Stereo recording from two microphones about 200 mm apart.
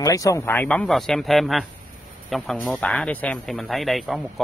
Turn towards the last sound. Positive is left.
turn(degrees=0)  # may be behind; listen again after turning